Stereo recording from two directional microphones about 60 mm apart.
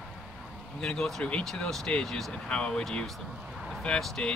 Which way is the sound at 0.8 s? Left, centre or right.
Centre.